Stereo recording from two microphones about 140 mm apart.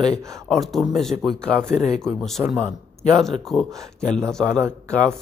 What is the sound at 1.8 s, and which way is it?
Speech, 5° left (ahead or behind).